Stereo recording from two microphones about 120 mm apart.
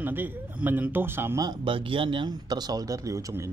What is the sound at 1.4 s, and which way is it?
Speech, 40° right (ahead or behind).